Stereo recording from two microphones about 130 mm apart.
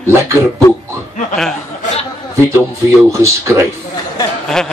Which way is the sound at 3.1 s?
20° right (ahead or behind).